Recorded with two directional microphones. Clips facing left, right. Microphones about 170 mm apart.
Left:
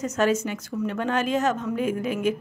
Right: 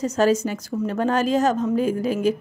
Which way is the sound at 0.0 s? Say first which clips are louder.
Right 4 dB; 35° right (ahead or behind).